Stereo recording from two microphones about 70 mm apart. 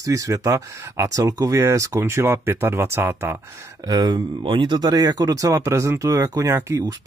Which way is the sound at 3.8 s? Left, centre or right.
Right.